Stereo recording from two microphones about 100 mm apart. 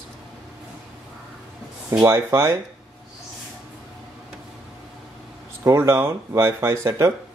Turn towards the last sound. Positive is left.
turn(degrees=-30)  # may be behind; listen again after turning